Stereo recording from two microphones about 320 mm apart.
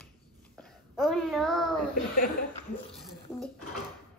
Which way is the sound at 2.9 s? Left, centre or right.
Centre.